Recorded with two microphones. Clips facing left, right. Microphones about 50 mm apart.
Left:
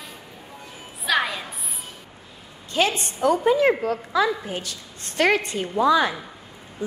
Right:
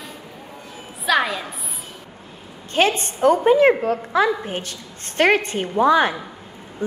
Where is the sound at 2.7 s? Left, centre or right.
Right.